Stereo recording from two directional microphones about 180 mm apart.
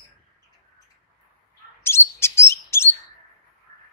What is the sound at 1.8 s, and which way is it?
Chirp, 15° left (ahead or behind).